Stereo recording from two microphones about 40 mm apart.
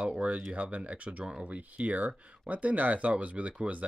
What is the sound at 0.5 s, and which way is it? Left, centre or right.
Speech, right.